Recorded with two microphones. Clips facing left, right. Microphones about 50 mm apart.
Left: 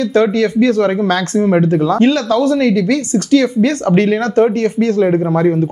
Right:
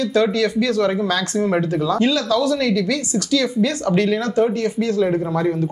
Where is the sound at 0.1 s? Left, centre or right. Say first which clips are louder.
Left 5 dB; left.